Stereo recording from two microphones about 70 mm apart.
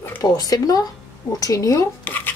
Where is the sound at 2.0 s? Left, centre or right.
Left.